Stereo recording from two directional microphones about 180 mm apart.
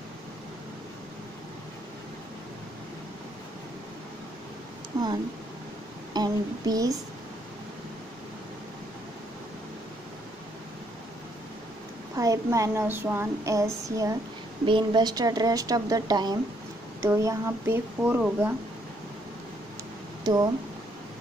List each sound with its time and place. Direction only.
6.1 s speech: 20° right (ahead or behind)
12.2 s speech: 20° right (ahead or behind)
20.2 s speech: 20° right (ahead or behind)